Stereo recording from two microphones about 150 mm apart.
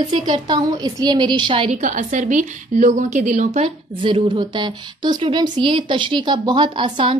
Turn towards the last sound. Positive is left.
turn(degrees=-35)  # may be behind; listen again after turning